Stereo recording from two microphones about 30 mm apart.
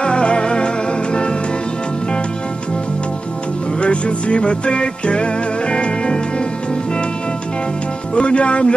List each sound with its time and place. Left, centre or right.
0.0 s music: left
3.8 s music: left
8.1 s speech: left